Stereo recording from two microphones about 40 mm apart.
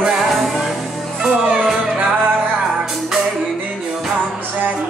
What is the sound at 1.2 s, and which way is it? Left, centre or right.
Music, right.